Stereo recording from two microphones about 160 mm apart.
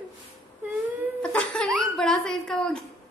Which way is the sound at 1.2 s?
5° left (ahead or behind).